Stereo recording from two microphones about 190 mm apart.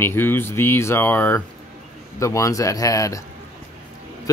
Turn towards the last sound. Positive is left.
turn(degrees=15)  # may be behind; listen again after turning